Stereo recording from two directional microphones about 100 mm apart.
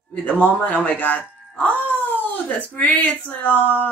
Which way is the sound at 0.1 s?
15° left (ahead or behind).